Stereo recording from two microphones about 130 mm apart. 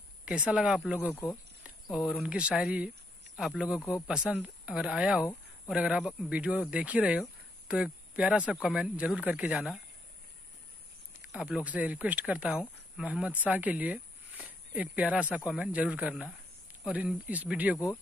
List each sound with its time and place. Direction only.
0.2 s speech: 10° right (ahead or behind)
1.1 s speech: 15° left (ahead or behind)
1.6 s speech: 5° right (ahead or behind)
11.3 s speech: 10° right (ahead or behind)